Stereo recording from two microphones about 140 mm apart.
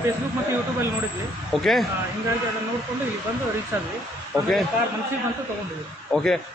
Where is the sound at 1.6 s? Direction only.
Centre (ahead or behind).